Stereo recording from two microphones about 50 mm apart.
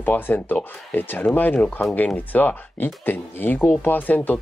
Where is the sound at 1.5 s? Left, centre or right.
Left.